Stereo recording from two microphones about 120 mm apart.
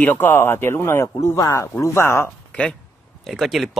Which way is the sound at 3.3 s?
Centre (ahead or behind).